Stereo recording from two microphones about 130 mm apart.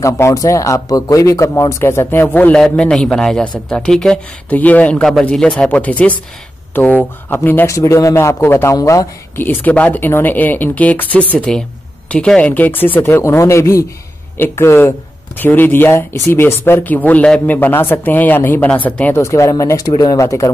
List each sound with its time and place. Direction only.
0.0 s a man's voice: 25° left (ahead or behind)